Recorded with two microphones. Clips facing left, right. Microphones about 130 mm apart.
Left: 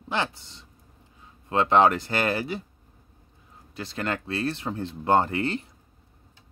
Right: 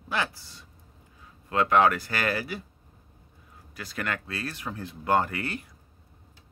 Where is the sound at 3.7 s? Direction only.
25° left (ahead or behind).